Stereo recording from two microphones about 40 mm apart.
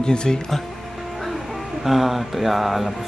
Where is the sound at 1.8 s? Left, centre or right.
Centre.